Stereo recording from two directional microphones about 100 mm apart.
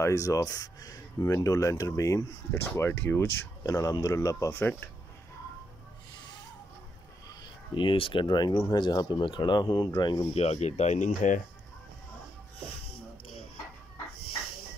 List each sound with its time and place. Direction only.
0.0 s speech: 30° left (ahead or behind)
2.5 s speech: 20° left (ahead or behind)
7.2 s speech: 55° left (ahead or behind)
10.3 s speech: 90° left